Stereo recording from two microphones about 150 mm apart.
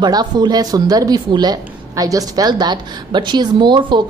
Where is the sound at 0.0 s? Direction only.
30° right (ahead or behind).